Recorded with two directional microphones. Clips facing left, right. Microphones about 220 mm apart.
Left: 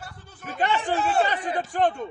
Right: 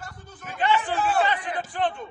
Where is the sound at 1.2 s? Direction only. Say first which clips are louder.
Left 1 dB; 40° left (ahead or behind).